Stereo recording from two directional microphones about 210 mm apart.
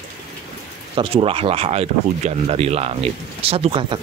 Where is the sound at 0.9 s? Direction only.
25° right (ahead or behind).